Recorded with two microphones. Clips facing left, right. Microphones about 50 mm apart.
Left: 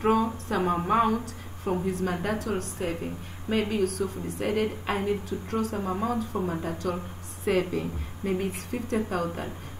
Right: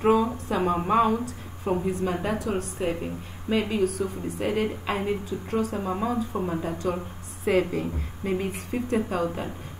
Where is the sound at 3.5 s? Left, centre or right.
Right.